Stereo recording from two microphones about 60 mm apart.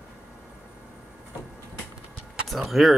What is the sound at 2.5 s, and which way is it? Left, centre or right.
Keys jangling, centre.